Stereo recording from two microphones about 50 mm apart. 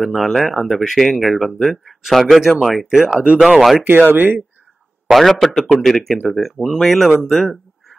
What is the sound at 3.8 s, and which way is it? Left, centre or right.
Speech, right.